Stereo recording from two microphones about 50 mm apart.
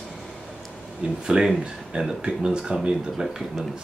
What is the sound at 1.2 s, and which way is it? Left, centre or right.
Speech, centre.